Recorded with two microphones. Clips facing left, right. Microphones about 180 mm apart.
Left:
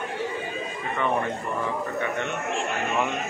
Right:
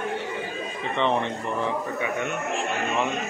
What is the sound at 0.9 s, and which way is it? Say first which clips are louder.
Speech: right 2 dB; 25° right (ahead or behind).